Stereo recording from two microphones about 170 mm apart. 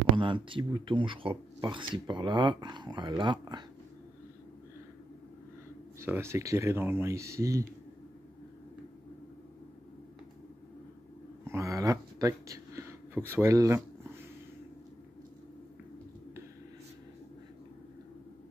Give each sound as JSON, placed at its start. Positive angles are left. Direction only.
{"t": 0.1, "sound": "speech", "side_deg": -30}
{"t": 5.9, "sound": "speech", "side_deg": -15}
{"t": 11.4, "sound": "speech", "side_deg": -15}